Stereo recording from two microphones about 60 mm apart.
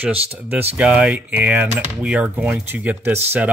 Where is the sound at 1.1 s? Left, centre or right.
Right.